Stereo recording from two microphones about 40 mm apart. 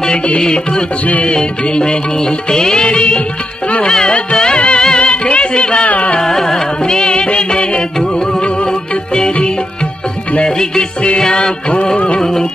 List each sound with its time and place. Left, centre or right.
0.4 s music: centre
5.9 s music: left
6.2 s music: centre
9.1 s music: centre
11.7 s music: left